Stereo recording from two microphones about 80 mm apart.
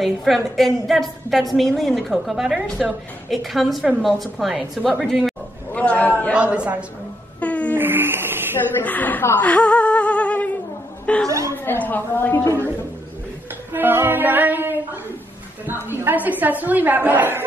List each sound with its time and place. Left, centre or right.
0.0 s a woman's voice: centre
5.7 s a man's voice: centre
6.3 s a woman's voice: centre
7.3 s a sound: centre
7.7 s speech: right
8.7 s a sound: left
11.2 s speech: right
11.5 s a woman's voice: left
13.7 s a woman's voice: right